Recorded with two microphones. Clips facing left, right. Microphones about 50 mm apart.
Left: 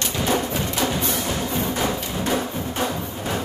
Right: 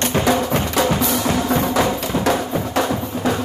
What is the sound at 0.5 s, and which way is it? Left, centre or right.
Music, right.